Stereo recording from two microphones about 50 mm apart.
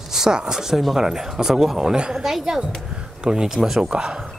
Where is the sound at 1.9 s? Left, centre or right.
Centre.